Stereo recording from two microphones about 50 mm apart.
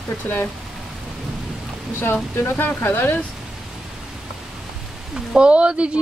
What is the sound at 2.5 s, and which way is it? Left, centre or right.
Speech, left.